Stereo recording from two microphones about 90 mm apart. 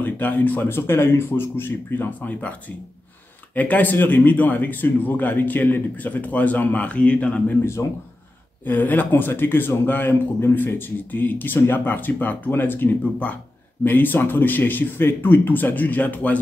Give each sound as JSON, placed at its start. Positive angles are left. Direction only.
{"t": 0.0, "sound": "a man's voice", "side_deg": 20}
{"t": 3.5, "sound": "a man's voice", "side_deg": 20}
{"t": 8.6, "sound": "a man's voice", "side_deg": 20}